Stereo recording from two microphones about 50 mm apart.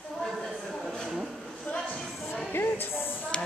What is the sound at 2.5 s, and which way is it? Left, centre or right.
Speech, left.